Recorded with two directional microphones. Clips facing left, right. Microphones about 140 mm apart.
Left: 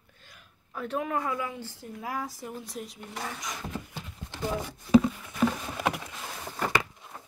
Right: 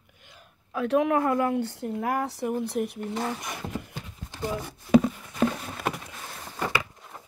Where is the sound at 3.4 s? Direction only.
60° right (ahead or behind).